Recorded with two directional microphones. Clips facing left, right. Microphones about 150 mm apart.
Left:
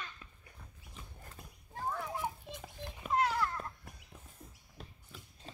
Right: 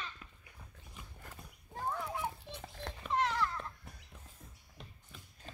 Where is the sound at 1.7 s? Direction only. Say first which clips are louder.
Even; 5° left (ahead or behind).